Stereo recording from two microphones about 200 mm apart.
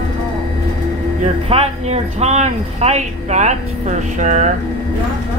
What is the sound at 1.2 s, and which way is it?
Speech, 30° right (ahead or behind).